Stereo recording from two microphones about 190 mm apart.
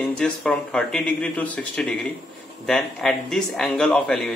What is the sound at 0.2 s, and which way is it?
Speech, 5° left (ahead or behind).